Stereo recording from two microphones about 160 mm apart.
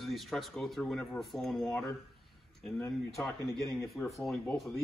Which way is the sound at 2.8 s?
15° left (ahead or behind).